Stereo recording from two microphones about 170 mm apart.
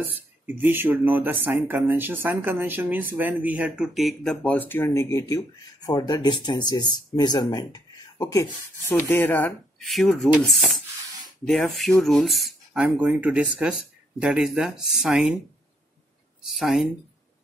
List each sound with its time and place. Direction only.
0.0 s speech: 10° right (ahead or behind)
16.4 s speech: centre (ahead or behind)